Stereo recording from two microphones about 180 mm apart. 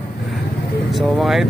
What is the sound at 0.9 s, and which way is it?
Speech, centre (ahead or behind).